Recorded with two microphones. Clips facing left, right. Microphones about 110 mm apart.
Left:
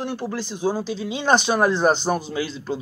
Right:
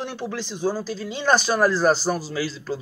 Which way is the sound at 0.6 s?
20° left (ahead or behind).